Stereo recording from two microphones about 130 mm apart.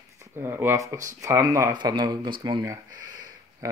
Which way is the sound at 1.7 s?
35° right (ahead or behind).